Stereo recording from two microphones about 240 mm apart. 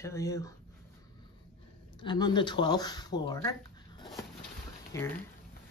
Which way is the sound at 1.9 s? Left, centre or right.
Centre.